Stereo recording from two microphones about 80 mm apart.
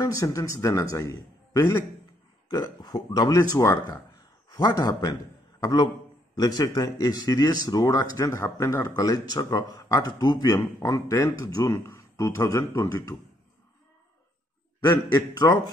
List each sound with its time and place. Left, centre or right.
0.0 s speech: left
2.8 s a man's voice: left
3.3 s speech: left
4.5 s a sound: left
4.7 s a man's voice: left
10.5 s speech: left
14.9 s a man's voice: left